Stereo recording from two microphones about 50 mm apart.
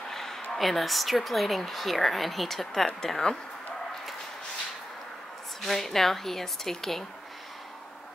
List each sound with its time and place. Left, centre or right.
0.1 s speech: centre
5.6 s speech: centre